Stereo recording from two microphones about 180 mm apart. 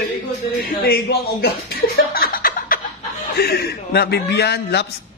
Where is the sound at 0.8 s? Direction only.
60° left (ahead or behind).